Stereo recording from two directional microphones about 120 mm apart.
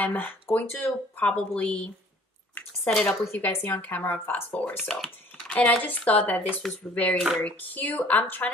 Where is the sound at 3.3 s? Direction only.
20° left (ahead or behind).